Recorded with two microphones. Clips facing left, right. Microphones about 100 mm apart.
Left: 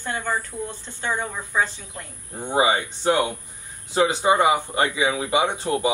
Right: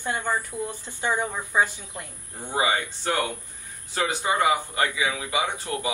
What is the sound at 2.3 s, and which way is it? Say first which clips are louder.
Speech: left 4 dB; 20° left (ahead or behind).